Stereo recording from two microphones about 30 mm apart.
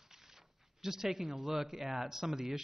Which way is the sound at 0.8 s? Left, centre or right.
Centre.